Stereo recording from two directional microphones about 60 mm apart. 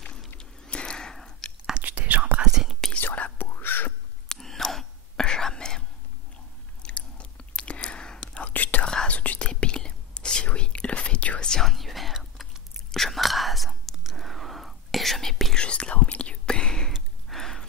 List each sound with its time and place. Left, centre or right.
0.4 s a sound: centre
1.7 s whispering: right
2.4 s whispering: centre
3.0 s whispering: left
4.3 s whispering: centre
6.8 s chewing: left
8.8 s whispering: centre
11.6 s whispering: centre
15.6 s whispering: centre
16.9 s a sound: centre